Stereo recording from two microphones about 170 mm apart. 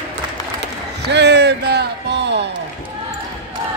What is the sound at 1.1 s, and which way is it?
Basketball bounce, 80° right.